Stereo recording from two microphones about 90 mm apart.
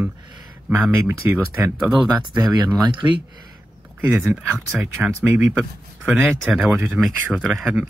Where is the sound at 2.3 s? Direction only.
60° right (ahead or behind).